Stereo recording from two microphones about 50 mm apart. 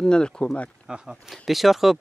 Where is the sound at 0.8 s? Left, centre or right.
Centre.